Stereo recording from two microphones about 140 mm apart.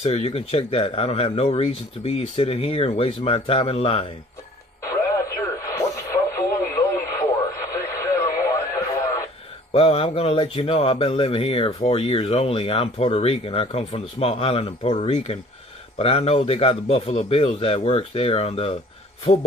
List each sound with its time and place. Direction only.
0.0 s speech: 45° left (ahead or behind)
4.8 s radio: 25° left (ahead or behind)
9.8 s speech: 45° left (ahead or behind)